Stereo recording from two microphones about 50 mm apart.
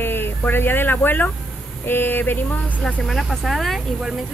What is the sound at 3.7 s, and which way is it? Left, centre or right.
Speech, centre.